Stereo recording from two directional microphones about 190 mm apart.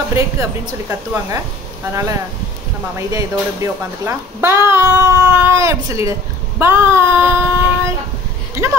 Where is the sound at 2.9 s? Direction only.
15° right (ahead or behind).